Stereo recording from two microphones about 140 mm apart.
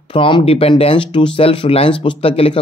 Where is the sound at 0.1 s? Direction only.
40° left (ahead or behind).